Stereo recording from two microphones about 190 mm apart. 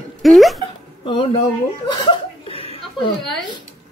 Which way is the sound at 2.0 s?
30° left (ahead or behind).